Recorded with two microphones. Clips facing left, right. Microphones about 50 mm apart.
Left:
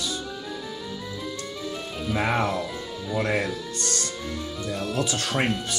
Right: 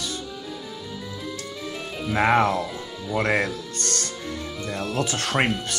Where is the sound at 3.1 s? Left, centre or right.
Right.